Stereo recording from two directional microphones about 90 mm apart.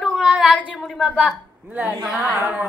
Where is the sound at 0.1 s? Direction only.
10° right (ahead or behind).